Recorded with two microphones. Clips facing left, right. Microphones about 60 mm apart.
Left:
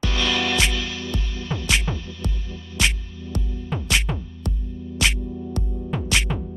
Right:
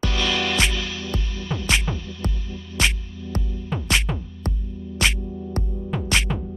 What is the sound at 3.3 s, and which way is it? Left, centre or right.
Music, right.